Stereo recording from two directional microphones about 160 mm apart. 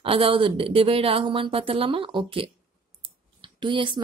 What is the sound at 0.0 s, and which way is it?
Speech, 35° right (ahead or behind).